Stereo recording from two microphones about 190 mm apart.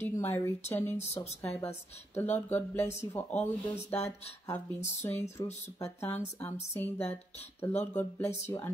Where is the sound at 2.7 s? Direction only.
15° left (ahead or behind).